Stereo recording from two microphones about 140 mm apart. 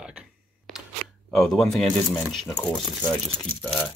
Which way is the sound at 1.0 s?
90° left.